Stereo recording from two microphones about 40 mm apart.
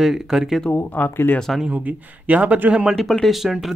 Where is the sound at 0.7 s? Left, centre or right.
Left.